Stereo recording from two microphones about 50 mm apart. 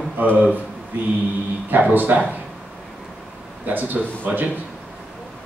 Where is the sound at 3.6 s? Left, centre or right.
Right.